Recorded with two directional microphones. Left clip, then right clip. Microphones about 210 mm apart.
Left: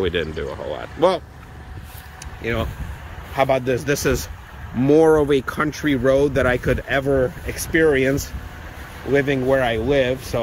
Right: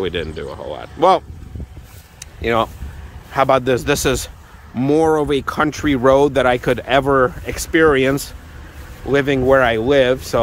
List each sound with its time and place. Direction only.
0.0 s speech: centre (ahead or behind)
2.4 s speech: 15° right (ahead or behind)